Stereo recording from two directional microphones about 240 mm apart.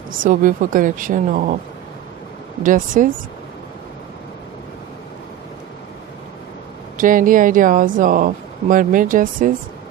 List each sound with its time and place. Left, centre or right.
0.2 s speech: right
2.6 s speech: right
7.0 s speech: right